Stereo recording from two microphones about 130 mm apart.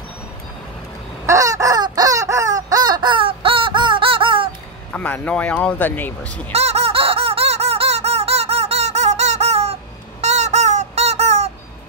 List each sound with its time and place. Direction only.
1.2 s crow: 25° right (ahead or behind); by 4.6 s 40° right (ahead or behind)
4.9 s speech: 15° left (ahead or behind)
6.5 s squeak: 55° right (ahead or behind)
10.2 s a sound: 60° right (ahead or behind)